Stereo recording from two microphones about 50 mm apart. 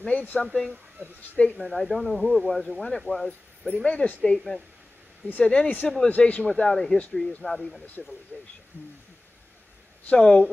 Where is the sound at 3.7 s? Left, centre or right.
Left.